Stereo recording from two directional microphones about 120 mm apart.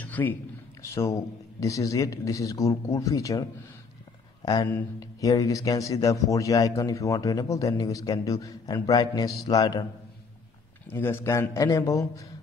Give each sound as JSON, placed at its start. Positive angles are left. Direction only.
{"t": 0.0, "sound": "a sound", "side_deg": 15}
{"t": 0.9, "sound": "a man's voice", "side_deg": 25}
{"t": 5.2, "sound": "a man's voice", "side_deg": 30}
{"t": 10.9, "sound": "a man's voice", "side_deg": 20}